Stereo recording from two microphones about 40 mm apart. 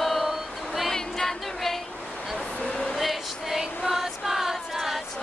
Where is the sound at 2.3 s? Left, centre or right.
Left.